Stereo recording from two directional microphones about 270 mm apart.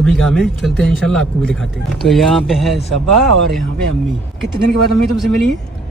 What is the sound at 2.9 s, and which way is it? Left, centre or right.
Speech, right.